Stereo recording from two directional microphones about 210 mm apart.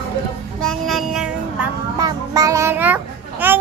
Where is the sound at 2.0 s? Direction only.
15° right (ahead or behind).